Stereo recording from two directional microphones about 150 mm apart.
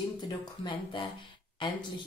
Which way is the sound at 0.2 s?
30° left (ahead or behind).